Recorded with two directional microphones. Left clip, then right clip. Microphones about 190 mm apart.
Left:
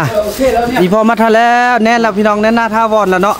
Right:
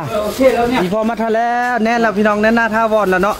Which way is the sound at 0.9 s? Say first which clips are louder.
Left 7 dB; 35° left (ahead or behind).